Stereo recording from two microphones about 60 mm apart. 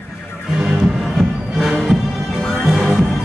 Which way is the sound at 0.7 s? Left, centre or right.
Centre.